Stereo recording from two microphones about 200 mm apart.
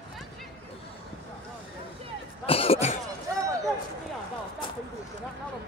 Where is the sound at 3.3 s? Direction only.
15° right (ahead or behind).